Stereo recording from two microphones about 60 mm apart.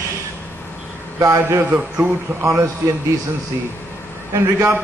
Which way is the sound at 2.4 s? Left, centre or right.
Right.